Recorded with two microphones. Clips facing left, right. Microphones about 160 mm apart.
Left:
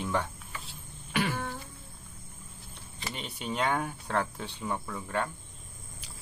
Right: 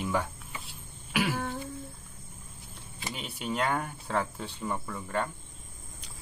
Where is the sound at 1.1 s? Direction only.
10° right (ahead or behind).